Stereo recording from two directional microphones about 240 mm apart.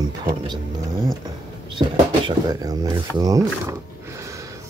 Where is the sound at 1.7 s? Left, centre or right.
Centre.